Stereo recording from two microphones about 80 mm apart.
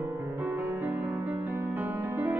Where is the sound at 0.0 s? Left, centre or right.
Right.